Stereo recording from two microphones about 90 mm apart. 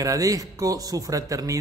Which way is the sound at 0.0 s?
40° right (ahead or behind).